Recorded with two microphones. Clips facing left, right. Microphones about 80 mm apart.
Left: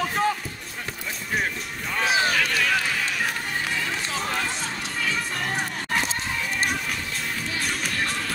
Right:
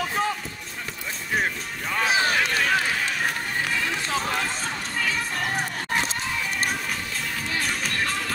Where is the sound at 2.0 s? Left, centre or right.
Right.